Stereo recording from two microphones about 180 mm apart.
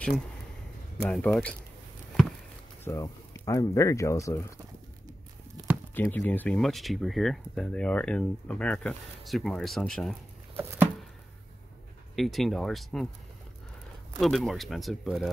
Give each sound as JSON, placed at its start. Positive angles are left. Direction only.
{"t": 1.0, "sound": "speech", "side_deg": 5}
{"t": 2.8, "sound": "speech", "side_deg": 20}
{"t": 5.9, "sound": "speech", "side_deg": 10}
{"t": 10.5, "sound": "a sound", "side_deg": -10}
{"t": 12.2, "sound": "speech", "side_deg": 0}
{"t": 14.2, "sound": "speech", "side_deg": 0}